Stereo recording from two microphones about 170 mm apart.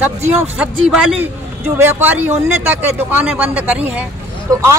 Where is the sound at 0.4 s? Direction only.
5° right (ahead or behind).